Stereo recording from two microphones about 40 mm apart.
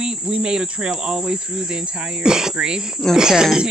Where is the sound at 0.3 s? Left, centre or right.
Right.